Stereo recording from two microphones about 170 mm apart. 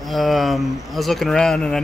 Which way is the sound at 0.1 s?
Centre (ahead or behind).